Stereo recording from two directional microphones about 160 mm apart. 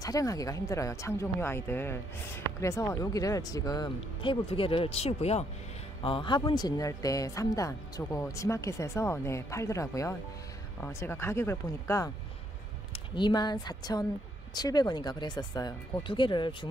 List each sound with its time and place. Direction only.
0.0 s speech: 20° left (ahead or behind)
12.9 s speech: 30° left (ahead or behind)